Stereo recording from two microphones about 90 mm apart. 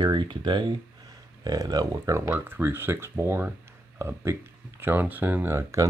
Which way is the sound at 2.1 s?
25° right (ahead or behind).